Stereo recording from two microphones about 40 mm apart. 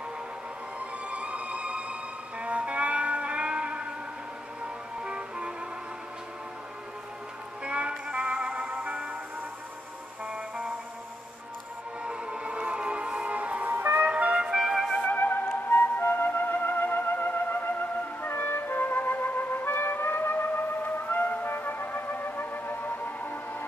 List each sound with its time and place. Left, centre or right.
0.7 s music: right
5.0 s music: right
7.6 s music: right
10.2 s music: right
12.0 s music: right
13.7 s music: right
14.0 s music: right
14.5 s music: centre
15.1 s music: left
20.8 s music: left